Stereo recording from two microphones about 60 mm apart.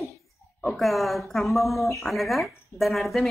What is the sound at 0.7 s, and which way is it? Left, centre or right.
Speech, centre.